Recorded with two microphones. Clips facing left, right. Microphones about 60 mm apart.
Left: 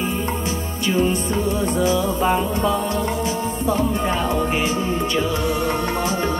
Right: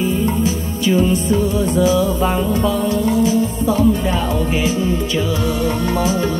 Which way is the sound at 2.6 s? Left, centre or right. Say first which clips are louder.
Right 3 dB; left.